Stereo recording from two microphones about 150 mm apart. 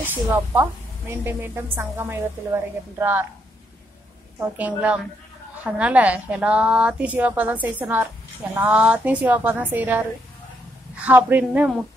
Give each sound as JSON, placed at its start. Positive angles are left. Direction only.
{"t": 0.0, "sound": "a woman's voice", "side_deg": -15}
{"t": 4.4, "sound": "a woman's voice", "side_deg": -10}